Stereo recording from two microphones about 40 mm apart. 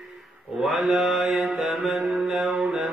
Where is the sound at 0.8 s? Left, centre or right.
Centre.